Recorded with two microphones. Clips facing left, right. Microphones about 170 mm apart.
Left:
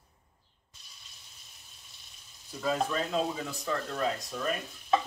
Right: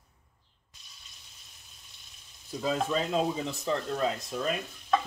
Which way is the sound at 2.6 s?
20° right (ahead or behind).